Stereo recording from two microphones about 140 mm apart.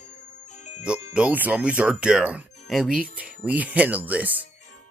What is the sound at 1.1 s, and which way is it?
Speech, 10° right (ahead or behind).